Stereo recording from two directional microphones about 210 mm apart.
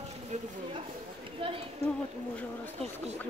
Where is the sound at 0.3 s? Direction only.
35° right (ahead or behind).